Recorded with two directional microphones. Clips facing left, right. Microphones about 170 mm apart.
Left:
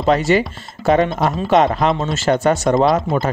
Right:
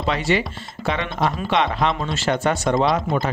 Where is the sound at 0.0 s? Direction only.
45° left (ahead or behind).